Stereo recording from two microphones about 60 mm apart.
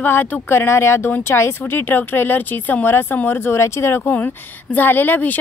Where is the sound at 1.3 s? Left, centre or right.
Left.